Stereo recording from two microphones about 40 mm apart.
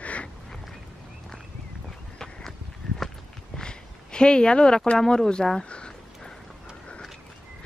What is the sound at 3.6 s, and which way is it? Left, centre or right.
Speech, left.